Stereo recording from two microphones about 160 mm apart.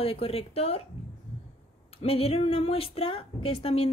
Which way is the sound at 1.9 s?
40° left (ahead or behind).